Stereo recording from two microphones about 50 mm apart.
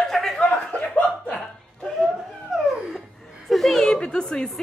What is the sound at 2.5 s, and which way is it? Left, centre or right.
Dog, centre.